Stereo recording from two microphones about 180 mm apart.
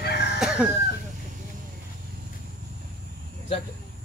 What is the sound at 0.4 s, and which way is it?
Chicken, 5° right (ahead or behind).